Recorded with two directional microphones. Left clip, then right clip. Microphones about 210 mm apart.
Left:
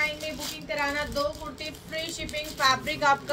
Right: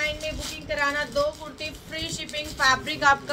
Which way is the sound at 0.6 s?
15° right (ahead or behind).